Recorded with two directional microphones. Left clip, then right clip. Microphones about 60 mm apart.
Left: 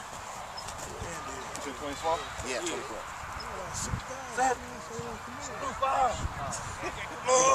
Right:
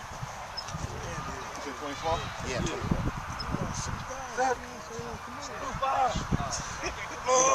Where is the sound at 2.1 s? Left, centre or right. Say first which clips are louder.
Left 1 dB; centre.